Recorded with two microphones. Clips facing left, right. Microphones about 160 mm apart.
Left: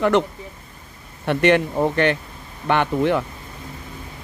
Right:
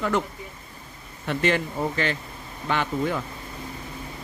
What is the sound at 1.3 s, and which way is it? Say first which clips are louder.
Speech: left 7 dB; 65° left (ahead or behind).